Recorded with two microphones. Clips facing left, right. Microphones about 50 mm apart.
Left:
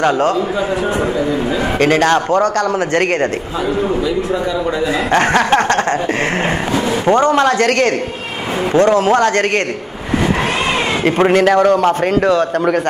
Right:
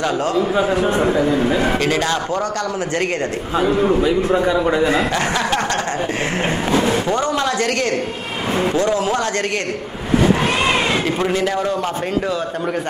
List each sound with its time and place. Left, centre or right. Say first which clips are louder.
1.8 s speech: left 6 dB; left
4.0 s a man's voice: right 1 dB; right
5.1 s speech: left 7 dB; left
7.1 s speech: left 7 dB; left
11.1 s a man's voice: left 7 dB; left